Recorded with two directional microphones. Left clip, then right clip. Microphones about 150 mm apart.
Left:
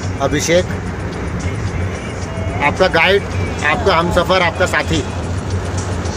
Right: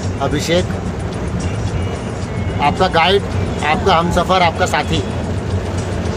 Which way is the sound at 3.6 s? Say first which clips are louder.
Even; 5° right (ahead or behind).